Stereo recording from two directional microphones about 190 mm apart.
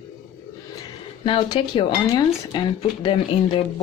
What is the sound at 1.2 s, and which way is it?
Speech, 25° left (ahead or behind).